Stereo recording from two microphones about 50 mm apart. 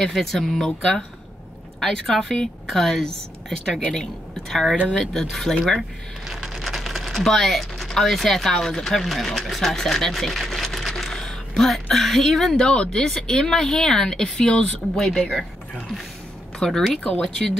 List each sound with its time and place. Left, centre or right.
0.0 s a woman's voice: centre
12.5 s speech: centre
16.5 s speech: centre